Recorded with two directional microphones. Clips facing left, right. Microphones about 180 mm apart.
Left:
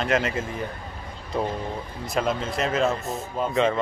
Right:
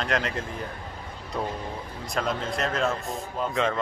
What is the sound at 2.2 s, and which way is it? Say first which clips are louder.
Speech: left 3 dB; 5° left (ahead or behind).